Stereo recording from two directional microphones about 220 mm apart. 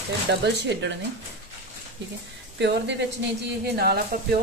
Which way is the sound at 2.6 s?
55° right (ahead or behind).